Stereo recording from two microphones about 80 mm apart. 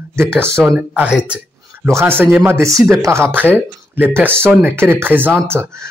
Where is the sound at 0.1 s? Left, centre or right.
Right.